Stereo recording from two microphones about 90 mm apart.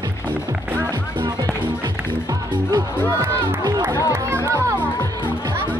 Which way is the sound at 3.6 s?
45° right (ahead or behind).